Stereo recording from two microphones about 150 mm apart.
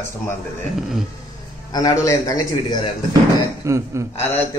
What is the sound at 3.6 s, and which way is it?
Speech, 20° right (ahead or behind).